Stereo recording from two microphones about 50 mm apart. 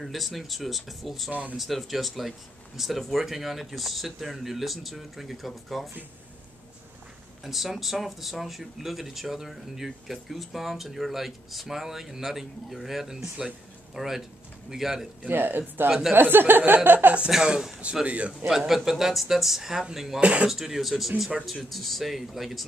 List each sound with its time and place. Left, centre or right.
0.0 s speech: centre
1.3 s speech: right
1.6 s speech: centre
7.4 s a man's voice: centre
15.2 s speech: right
17.3 s a man's voice: centre
18.0 s speech: right
18.7 s speech: centre
20.2 s speech: right
20.4 s speech: centre